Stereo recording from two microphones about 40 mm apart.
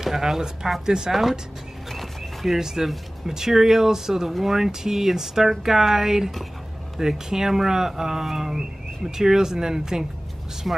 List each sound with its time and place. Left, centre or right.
0.0 s speech: centre
1.9 s a sound: centre
2.9 s speech: centre